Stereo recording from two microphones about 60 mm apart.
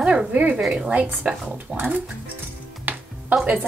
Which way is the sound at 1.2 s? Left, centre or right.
Centre.